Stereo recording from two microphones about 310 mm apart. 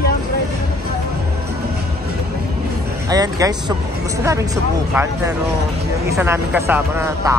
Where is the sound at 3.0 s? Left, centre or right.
Centre.